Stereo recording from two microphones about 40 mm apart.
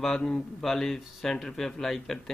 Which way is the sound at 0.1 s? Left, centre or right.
Centre.